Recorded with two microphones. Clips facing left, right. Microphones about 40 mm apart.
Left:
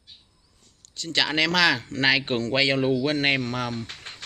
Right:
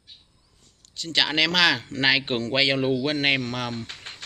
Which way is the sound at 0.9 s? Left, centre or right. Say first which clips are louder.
Right 1 dB; right.